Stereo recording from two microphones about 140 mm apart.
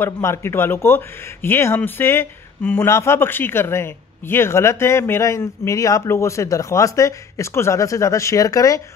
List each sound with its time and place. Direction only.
0.0 s speech: 20° left (ahead or behind)